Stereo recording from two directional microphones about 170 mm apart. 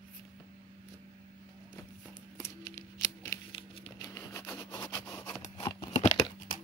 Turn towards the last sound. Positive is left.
turn(degrees=45)  # may be behind; listen again after turning